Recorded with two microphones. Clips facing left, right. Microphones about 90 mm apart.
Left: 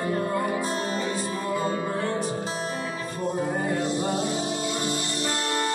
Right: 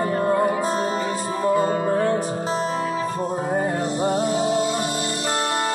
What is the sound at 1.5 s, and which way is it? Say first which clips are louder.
Music: right 7 dB; 40° right (ahead or behind).